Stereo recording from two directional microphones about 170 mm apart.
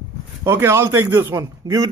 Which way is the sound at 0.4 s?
15° right (ahead or behind).